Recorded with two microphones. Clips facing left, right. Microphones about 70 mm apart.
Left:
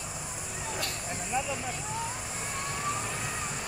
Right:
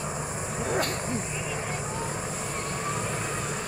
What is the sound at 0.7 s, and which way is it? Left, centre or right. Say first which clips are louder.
Vehicle: right 9 dB; right.